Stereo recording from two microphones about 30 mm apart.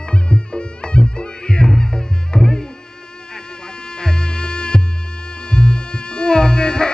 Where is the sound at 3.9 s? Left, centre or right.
Left.